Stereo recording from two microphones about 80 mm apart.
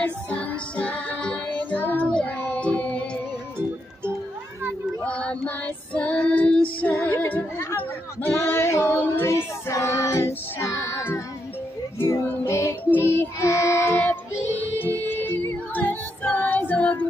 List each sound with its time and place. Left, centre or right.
0.0 s music: centre
2.0 s child singing: centre
5.0 s child singing: centre
5.9 s female singing: centre
7.5 s child singing: left
12.3 s music: left
12.9 s child singing: left